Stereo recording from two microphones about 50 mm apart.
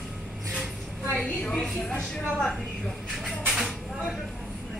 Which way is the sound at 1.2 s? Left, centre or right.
Centre.